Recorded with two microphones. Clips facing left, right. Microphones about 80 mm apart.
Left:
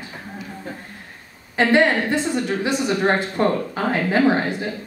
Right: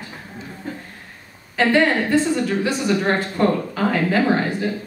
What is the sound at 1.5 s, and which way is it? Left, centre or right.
A woman's voice, left.